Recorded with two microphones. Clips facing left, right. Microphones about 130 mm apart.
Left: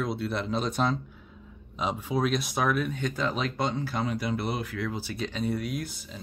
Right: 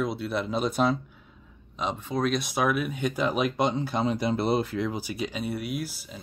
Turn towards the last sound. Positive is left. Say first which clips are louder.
# right 2 dB
turn(degrees=-5)  # may be behind; listen again after turning